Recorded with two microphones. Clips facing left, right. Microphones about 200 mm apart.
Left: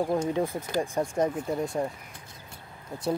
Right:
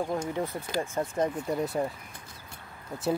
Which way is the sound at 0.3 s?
15° left (ahead or behind).